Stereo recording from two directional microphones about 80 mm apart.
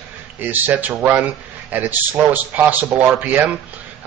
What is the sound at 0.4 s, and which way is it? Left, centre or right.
Speech, right.